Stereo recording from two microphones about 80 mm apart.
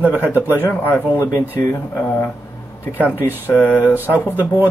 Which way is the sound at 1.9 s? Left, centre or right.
Left.